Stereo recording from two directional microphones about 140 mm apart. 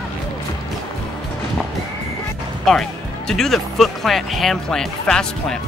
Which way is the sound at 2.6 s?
5° left (ahead or behind).